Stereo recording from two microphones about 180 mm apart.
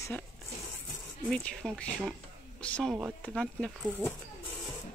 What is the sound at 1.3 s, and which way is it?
Speech, 5° left (ahead or behind).